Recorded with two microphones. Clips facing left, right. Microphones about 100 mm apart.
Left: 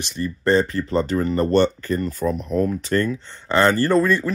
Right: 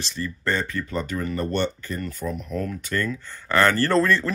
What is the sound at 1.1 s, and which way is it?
Speech, 40° left (ahead or behind).